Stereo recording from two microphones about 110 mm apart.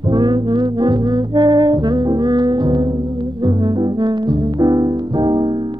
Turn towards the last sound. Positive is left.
turn(degrees=-45)  # may be behind; listen again after turning